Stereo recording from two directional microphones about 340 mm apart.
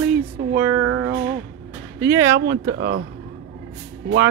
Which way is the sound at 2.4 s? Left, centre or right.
Right.